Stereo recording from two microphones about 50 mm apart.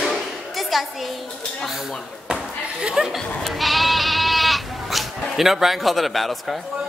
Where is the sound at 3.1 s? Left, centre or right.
Centre.